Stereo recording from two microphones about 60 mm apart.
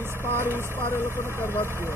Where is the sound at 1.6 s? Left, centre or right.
Right.